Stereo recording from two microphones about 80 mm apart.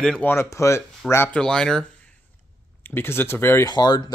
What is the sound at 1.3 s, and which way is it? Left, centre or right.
Speech, centre.